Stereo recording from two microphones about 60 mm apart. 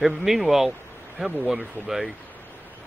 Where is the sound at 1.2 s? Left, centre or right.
Right.